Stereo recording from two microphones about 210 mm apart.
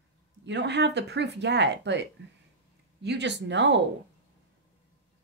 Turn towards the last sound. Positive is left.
turn(degrees=-60)  # may be behind; listen again after turning